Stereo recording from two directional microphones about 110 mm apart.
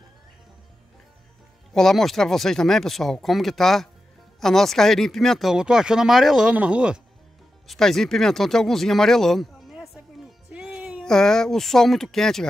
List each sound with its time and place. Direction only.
1.7 s speech: 5° left (ahead or behind)
7.6 s speech: centre (ahead or behind)
10.5 s music: 10° right (ahead or behind)
11.1 s speech: 5° left (ahead or behind)